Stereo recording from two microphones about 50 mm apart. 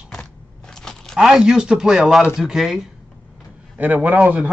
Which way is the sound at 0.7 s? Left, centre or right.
Centre.